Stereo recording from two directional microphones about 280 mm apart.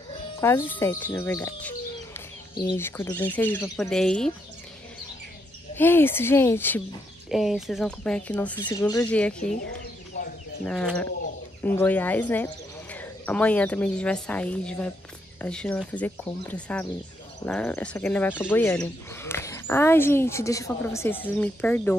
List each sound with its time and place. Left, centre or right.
0.4 s speech: centre
5.8 s speech: centre
10.1 s bird: left
10.6 s speech: centre